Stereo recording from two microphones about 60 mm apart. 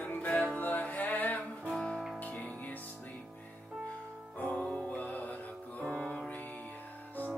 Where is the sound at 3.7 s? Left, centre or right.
Centre.